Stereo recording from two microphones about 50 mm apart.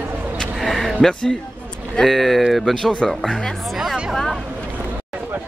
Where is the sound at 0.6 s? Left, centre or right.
Centre.